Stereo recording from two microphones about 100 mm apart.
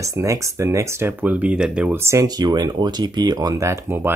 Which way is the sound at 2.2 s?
40° right (ahead or behind).